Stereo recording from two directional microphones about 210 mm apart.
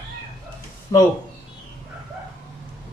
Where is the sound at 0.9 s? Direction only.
20° left (ahead or behind).